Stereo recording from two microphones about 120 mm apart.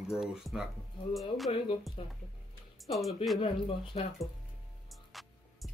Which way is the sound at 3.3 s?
45° left (ahead or behind).